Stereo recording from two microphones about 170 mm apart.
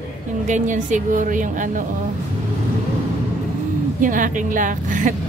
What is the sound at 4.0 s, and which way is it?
A woman's voice, 50° right (ahead or behind).